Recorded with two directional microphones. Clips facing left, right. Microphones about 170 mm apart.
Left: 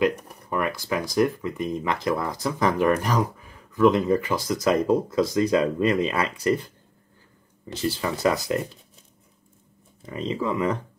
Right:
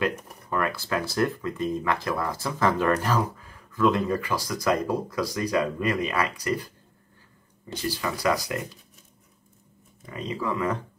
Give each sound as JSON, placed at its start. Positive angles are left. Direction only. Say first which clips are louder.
{"t": 0.0, "sound": "speech", "louder": "left 5 dB", "side_deg": 15}
{"t": 7.7, "sound": "speech", "louder": "left 3 dB", "side_deg": 25}
{"t": 10.0, "sound": "speech", "louder": "left 3 dB", "side_deg": 25}